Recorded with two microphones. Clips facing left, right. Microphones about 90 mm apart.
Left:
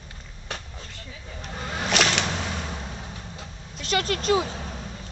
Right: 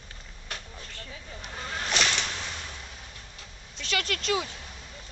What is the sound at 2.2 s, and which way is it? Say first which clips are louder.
Whip: left 7 dB; 40° left (ahead or behind).